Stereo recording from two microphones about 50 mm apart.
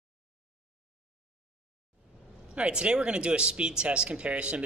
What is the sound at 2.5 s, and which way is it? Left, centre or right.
A man's voice, right.